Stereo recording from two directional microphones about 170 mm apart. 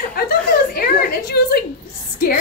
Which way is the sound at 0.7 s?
65° left (ahead or behind).